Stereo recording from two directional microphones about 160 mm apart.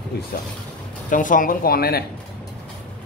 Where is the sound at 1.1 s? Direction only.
55° left (ahead or behind); by 2.0 s 70° left (ahead or behind).